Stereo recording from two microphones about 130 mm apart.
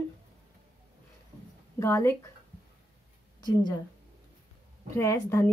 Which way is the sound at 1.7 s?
20° left (ahead or behind).